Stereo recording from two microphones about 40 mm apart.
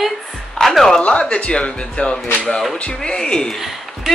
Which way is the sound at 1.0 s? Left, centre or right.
Left.